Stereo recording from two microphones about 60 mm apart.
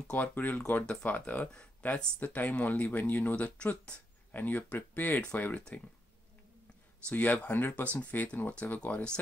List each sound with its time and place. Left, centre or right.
0.1 s speech: left
5.6 s speech: centre
7.1 s speech: left